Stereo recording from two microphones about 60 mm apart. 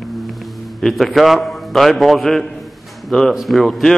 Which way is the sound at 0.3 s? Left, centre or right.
Centre.